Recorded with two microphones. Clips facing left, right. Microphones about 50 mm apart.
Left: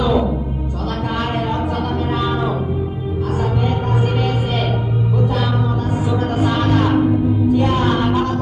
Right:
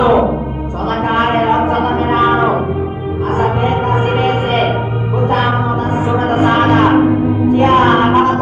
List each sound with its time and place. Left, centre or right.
0.0 s music: right
6.1 s music: right